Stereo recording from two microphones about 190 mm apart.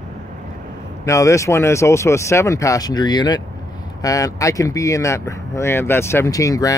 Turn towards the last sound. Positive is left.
turn(degrees=20)  # may be behind; listen again after turning